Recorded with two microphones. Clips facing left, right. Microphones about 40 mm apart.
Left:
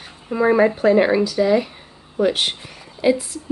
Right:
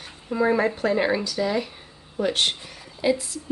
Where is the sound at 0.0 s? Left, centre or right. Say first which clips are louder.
Left 4 dB; centre.